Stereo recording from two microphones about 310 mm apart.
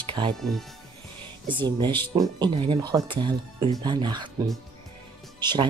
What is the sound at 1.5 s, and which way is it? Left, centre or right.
Speech, centre.